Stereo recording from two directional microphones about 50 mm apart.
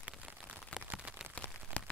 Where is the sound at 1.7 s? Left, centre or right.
Left.